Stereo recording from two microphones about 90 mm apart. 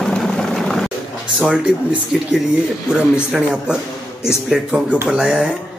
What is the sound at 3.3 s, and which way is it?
A man's voice, 10° right (ahead or behind).